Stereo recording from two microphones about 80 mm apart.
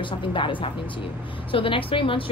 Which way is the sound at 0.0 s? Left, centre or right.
Left.